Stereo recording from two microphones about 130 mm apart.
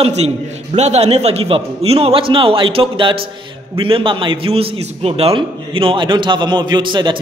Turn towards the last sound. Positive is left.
turn(degrees=-40)  # may be behind; listen again after turning